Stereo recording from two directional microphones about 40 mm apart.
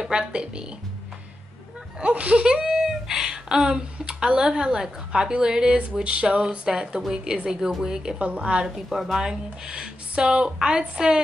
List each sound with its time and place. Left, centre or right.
0.0 s speech: right
2.0 s speech: right
3.1 s a sound: centre
4.1 s a woman's voice: right
8.4 s speech: right
8.8 s speech: centre